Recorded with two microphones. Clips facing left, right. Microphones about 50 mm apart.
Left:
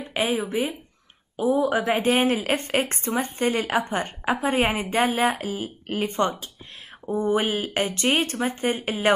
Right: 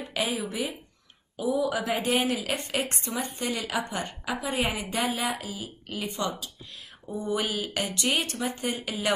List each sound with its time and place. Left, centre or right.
0.0 s a woman's voice: left